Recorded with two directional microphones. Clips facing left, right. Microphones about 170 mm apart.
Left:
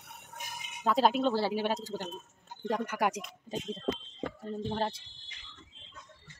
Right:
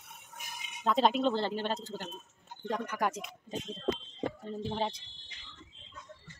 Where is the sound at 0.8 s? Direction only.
5° left (ahead or behind).